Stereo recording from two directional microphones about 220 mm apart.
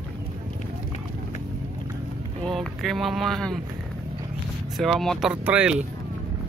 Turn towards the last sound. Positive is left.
turn(degrees=-5)  # may be behind; listen again after turning